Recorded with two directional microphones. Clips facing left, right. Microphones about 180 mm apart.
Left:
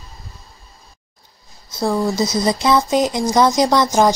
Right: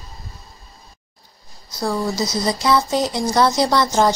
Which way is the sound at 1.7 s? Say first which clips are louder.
Left 3 dB; 25° left (ahead or behind).